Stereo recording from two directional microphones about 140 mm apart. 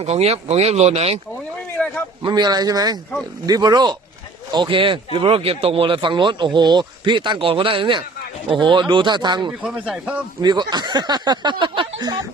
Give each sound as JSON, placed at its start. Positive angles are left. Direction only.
{"t": 0.0, "sound": "speech", "side_deg": -50}
{"t": 1.3, "sound": "a sound", "side_deg": 10}
{"t": 2.2, "sound": "speech", "side_deg": -30}
{"t": 9.5, "sound": "speech", "side_deg": -10}
{"t": 10.4, "sound": "speech", "side_deg": -30}